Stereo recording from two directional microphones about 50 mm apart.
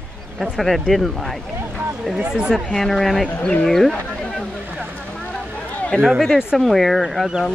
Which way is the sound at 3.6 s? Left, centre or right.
Centre.